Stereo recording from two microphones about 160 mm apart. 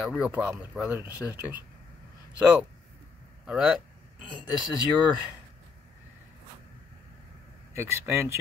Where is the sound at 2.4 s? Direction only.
10° right (ahead or behind).